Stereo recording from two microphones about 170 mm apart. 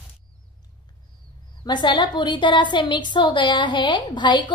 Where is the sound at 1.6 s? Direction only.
25° left (ahead or behind).